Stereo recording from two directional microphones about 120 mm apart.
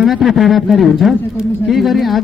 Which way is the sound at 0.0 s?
Centre (ahead or behind).